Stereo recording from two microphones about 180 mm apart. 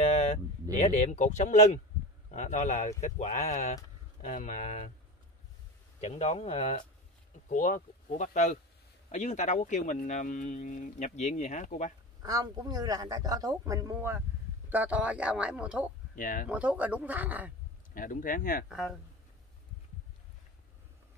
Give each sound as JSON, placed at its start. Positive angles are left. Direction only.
{"t": 0.0, "sound": "a sound", "side_deg": 35}
{"t": 0.7, "sound": "speech", "side_deg": 40}
{"t": 6.0, "sound": "speech", "side_deg": 35}
{"t": 12.2, "sound": "speech", "side_deg": -20}
{"t": 16.2, "sound": "speech", "side_deg": 50}
{"t": 16.4, "sound": "speech", "side_deg": -5}
{"t": 17.9, "sound": "speech", "side_deg": 50}
{"t": 18.7, "sound": "speech", "side_deg": 0}